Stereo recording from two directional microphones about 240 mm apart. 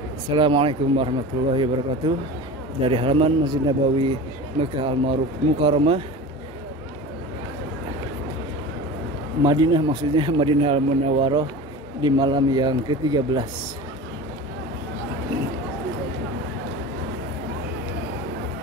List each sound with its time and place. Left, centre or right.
0.3 s a man's voice: right
9.4 s a man's voice: centre